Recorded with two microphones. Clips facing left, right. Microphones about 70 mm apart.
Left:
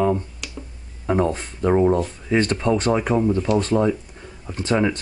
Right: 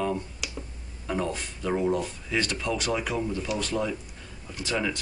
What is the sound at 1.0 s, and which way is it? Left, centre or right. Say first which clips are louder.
Speech: left 9 dB; left.